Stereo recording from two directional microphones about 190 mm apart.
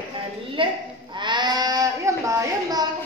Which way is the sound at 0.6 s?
25° right (ahead or behind).